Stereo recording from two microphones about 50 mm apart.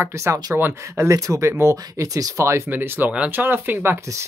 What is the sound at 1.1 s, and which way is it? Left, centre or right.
Speech, right.